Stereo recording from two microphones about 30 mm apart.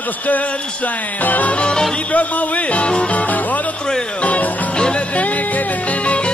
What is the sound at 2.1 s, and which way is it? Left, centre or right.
Music, left.